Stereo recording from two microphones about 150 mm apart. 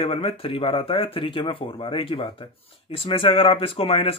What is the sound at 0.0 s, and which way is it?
Speech, 35° left (ahead or behind).